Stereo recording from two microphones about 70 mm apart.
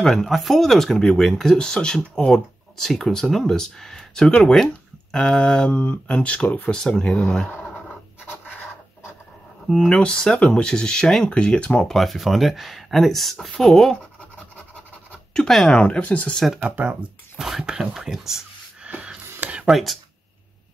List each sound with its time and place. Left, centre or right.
0.0 s speech: centre
9.7 s speech: centre
11.9 s speech: centre
15.3 s speech: centre
15.8 s speech: centre
16.6 s speech: right
17.4 s speech: centre
18.9 s a sound: centre
19.7 s speech: centre